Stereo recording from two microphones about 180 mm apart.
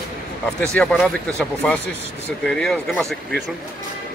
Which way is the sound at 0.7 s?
5° left (ahead or behind).